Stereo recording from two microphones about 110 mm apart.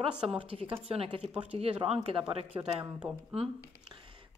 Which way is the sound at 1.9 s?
65° right (ahead or behind).